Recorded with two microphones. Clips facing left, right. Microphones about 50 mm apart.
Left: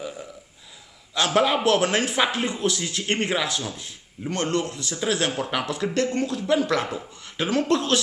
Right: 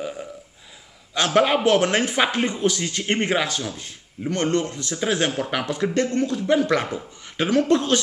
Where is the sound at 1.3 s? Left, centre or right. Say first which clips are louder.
Right 3 dB; centre.